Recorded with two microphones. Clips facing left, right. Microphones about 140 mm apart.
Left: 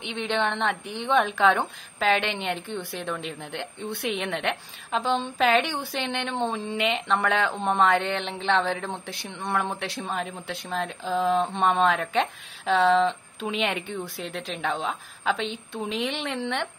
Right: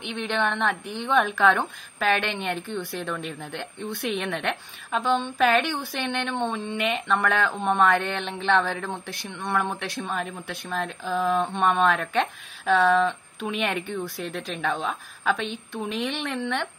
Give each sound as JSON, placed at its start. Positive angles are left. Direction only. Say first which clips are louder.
{"t": 0.0, "sound": "speech", "louder": "even", "side_deg": 20}
{"t": 6.3, "sound": "speech", "louder": "left 2 dB", "side_deg": 35}
{"t": 6.8, "sound": "speech", "louder": "even", "side_deg": 20}